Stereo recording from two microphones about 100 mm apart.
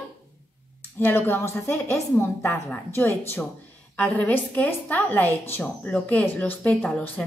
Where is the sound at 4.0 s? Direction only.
15° left (ahead or behind).